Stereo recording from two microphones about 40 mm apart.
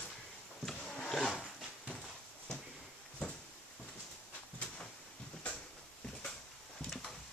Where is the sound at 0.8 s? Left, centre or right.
Centre.